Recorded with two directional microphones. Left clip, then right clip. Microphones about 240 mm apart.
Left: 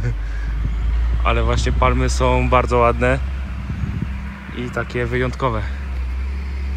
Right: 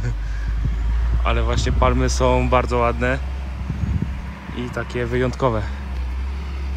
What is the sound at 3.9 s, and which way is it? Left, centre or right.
Vehicle, right.